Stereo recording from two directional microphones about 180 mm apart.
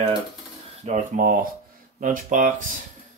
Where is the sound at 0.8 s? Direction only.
45° right (ahead or behind).